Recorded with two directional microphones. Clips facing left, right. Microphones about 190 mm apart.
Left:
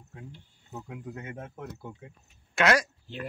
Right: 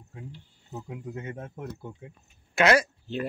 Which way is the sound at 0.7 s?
20° right (ahead or behind).